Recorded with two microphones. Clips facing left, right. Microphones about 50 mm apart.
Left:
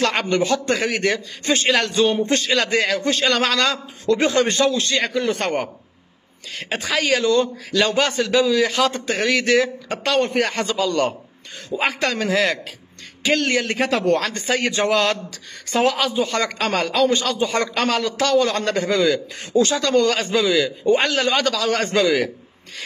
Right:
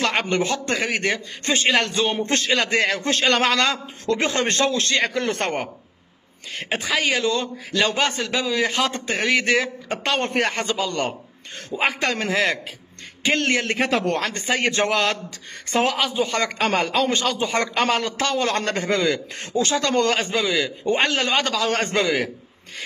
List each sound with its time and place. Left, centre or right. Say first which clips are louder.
0.0 s a man's voice: left 2 dB; right
5.1 s a man's voice: left 3 dB; right
6.7 s a man's voice: left 2 dB; centre